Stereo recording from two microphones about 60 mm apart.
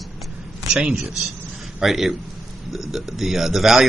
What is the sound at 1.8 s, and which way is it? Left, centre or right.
Speech, centre.